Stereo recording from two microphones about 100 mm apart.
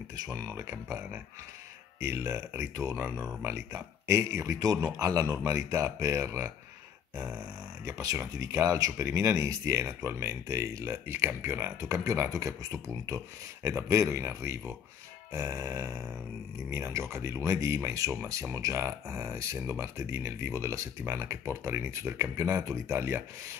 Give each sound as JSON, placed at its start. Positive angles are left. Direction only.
{"t": 0.1, "sound": "speech", "side_deg": -40}
{"t": 7.2, "sound": "grunt", "side_deg": -5}
{"t": 8.2, "sound": "speech", "side_deg": -35}